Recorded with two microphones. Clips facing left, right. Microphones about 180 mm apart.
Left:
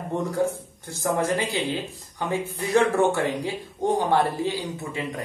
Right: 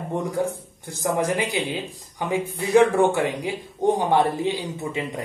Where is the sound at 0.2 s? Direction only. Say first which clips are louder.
Left 2 dB; 15° right (ahead or behind).